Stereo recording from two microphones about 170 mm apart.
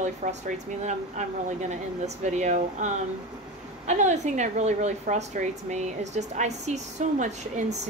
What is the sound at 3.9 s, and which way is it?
Speech, 45° right (ahead or behind).